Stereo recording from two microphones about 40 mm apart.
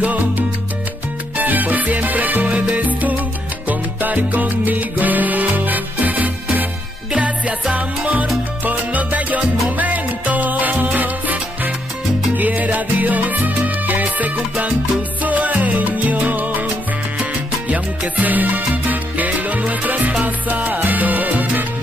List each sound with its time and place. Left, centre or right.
0.0 s music: right
1.4 s salsa music: right
3.6 s music: right
8.6 s salsa music: right